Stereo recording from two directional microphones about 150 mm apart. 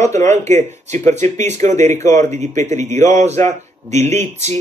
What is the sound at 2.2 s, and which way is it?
Speech, 55° right (ahead or behind).